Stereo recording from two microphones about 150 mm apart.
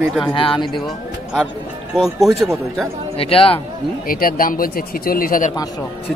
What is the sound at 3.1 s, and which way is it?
Speech, 40° left (ahead or behind).